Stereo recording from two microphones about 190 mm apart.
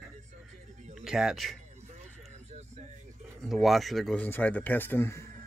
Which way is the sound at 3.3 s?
Centre (ahead or behind).